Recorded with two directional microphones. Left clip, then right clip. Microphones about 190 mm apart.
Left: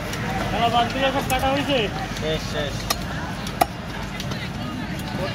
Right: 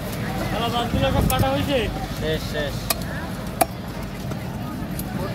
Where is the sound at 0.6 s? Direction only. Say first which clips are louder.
Left 4 dB; 35° left (ahead or behind).